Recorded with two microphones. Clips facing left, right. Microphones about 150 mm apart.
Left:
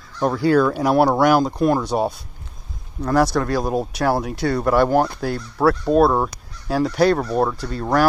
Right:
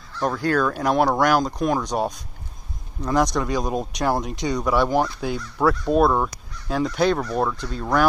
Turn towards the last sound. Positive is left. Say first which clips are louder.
# left 3 dB
turn(degrees=5)  # may be behind; listen again after turning